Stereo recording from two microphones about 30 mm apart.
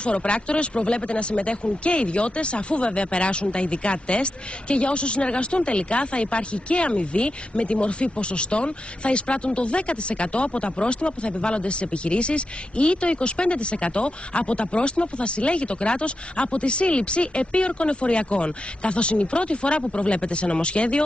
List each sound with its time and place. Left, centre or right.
0.0 s speech: left